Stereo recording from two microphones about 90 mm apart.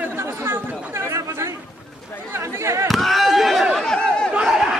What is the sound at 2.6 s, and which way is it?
Chop, 30° right (ahead or behind).